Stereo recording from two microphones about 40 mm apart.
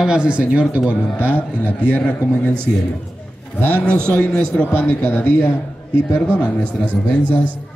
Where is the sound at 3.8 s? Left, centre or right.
Left.